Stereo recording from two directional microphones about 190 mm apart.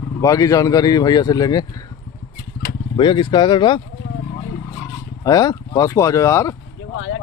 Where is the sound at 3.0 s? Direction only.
25° left (ahead or behind).